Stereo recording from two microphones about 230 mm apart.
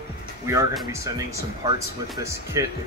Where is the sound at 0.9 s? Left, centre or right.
Centre.